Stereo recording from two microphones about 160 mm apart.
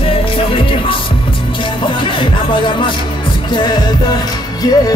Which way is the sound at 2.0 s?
30° left (ahead or behind).